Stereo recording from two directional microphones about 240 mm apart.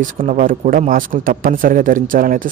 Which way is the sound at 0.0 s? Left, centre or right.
Right.